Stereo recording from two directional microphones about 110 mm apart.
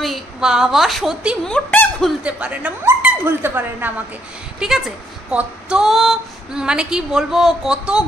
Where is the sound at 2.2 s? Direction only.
10° right (ahead or behind).